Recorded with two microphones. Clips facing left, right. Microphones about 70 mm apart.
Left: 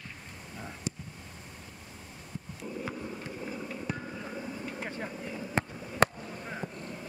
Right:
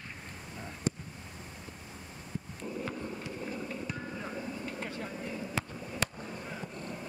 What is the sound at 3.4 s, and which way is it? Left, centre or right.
Vehicle, centre.